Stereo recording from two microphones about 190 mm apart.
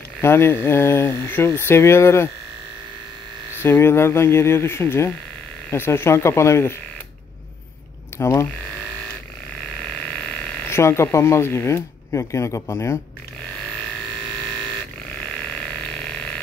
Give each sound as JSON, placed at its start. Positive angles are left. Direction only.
{"t": 0.2, "sound": "speech", "side_deg": 15}
{"t": 3.6, "sound": "speech", "side_deg": 15}
{"t": 8.2, "sound": "speech", "side_deg": 15}
{"t": 10.7, "sound": "speech", "side_deg": 15}